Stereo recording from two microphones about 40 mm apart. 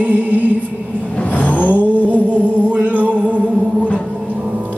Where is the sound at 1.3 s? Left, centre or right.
Left.